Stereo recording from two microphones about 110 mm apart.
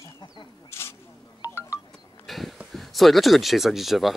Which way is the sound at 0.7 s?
25° left (ahead or behind).